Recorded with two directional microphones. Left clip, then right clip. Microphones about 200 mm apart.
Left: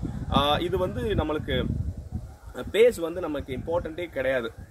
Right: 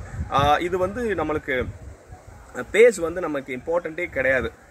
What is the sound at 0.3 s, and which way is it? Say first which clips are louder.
Speech: right 4 dB; 5° right (ahead or behind).